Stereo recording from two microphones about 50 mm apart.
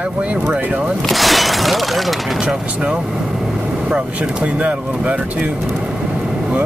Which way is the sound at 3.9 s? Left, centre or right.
Right.